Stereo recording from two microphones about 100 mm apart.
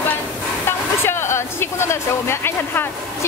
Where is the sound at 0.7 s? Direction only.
25° left (ahead or behind).